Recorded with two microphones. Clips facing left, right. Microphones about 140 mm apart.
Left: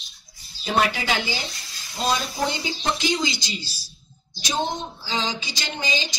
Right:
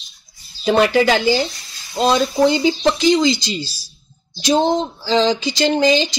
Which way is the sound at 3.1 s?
90° right.